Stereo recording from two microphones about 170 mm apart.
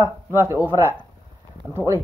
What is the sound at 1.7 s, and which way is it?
Speech, 15° right (ahead or behind).